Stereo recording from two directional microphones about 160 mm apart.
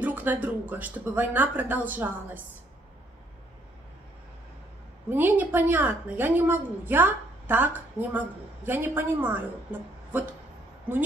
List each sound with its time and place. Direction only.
0.0 s a woman's voice: 10° right (ahead or behind)
5.1 s a woman's voice: 10° right (ahead or behind)